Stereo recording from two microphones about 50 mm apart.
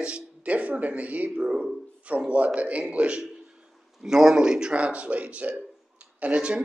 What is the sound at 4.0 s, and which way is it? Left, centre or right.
Speech, centre.